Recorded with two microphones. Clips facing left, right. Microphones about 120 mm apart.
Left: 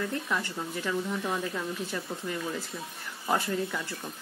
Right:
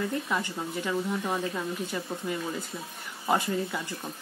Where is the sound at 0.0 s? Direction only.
15° right (ahead or behind).